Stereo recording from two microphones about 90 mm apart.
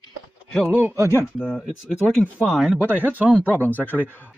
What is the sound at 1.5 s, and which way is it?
Speech, 15° left (ahead or behind).